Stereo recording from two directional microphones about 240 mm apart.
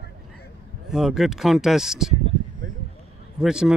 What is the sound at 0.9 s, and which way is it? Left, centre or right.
Speech, centre.